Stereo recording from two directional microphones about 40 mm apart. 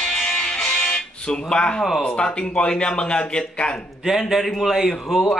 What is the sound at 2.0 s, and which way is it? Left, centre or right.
Speech, left.